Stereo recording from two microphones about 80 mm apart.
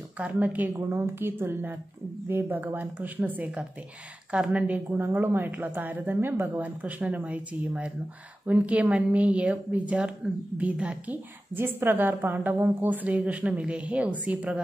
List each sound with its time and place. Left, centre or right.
0.2 s a woman's voice: centre
11.5 s a woman's voice: right